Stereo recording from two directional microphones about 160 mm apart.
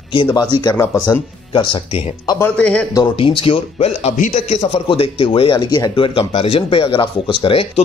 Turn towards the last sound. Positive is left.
turn(degrees=35)  # may be behind; listen again after turning